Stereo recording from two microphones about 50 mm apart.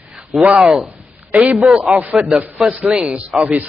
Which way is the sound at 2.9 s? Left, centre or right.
Centre.